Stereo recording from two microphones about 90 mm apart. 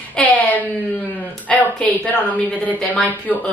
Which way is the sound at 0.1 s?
15° left (ahead or behind).